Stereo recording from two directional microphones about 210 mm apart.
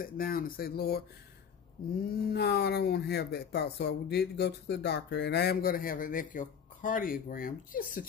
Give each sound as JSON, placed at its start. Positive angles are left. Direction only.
{"t": 0.0, "sound": "speech", "side_deg": 45}
{"t": 2.0, "sound": "speech", "side_deg": 50}